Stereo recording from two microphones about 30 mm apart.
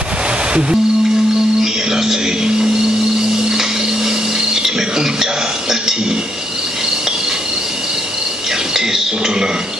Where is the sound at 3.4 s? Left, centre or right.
Centre.